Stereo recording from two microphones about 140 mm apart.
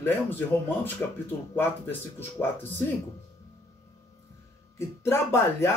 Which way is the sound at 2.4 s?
15° left (ahead or behind).